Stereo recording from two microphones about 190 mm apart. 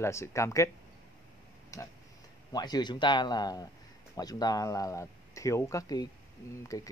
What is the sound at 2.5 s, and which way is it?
A man's voice, 20° left (ahead or behind).